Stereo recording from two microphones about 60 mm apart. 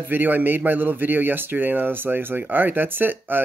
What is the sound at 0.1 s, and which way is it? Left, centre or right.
Speech, right.